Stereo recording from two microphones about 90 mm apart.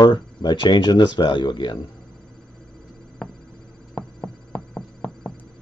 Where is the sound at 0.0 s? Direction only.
50° left (ahead or behind).